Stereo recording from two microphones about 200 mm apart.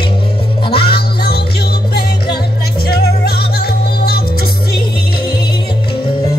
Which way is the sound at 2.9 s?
50° left (ahead or behind).